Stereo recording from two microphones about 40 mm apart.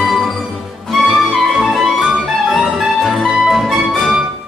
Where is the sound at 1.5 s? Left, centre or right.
Centre.